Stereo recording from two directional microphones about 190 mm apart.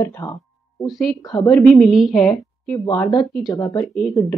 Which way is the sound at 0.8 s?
Centre (ahead or behind).